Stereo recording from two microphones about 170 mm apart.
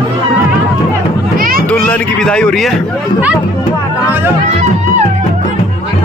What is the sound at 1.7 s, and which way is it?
A man's voice, 10° left (ahead or behind).